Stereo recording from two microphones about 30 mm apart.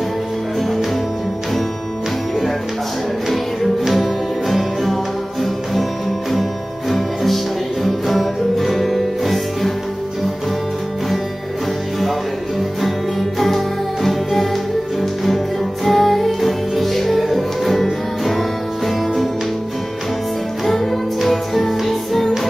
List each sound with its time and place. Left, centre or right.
3.9 s music: centre
7.8 s music: centre
14.0 s music: centre
20.6 s music: centre